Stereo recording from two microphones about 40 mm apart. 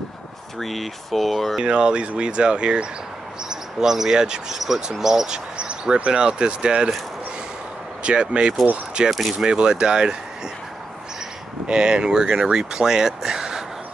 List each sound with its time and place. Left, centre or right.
0.6 s speech: centre
1.6 s speech: right
3.4 s speech: centre
8.0 s speech: right
11.6 s speech: right